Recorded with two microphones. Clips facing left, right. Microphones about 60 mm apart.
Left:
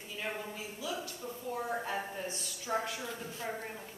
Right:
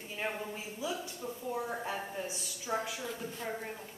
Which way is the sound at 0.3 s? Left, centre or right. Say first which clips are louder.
Right 1 dB; centre.